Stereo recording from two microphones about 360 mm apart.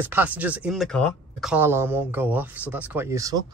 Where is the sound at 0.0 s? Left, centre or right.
Centre.